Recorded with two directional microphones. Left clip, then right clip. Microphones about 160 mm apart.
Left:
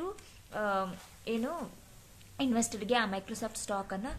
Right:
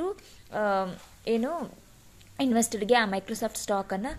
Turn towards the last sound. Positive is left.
turn(degrees=-40)  # may be behind; listen again after turning